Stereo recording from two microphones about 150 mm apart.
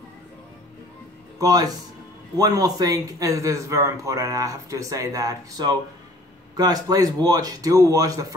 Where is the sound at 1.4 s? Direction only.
25° right (ahead or behind).